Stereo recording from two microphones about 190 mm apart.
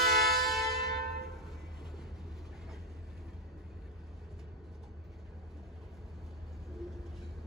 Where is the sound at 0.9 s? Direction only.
55° right (ahead or behind).